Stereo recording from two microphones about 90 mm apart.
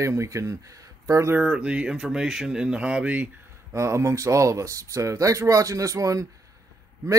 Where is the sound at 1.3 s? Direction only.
10° right (ahead or behind).